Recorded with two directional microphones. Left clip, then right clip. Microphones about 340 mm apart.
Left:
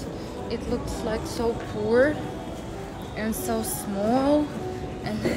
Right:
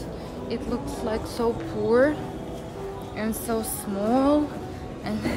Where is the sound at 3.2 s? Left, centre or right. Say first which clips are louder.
Even; centre.